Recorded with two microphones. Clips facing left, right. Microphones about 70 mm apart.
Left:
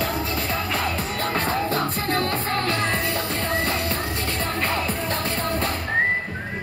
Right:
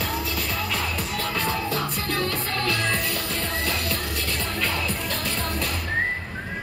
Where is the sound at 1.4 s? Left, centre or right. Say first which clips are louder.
Left 3 dB; left.